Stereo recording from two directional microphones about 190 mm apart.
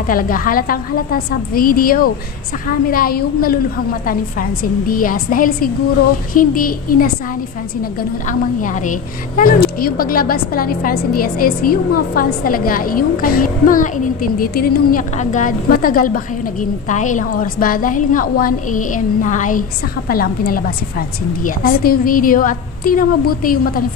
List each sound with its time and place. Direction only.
0.1 s a woman's voice: 50° left (ahead or behind)